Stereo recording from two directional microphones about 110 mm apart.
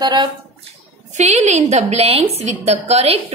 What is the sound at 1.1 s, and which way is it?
A woman's voice, 90° right.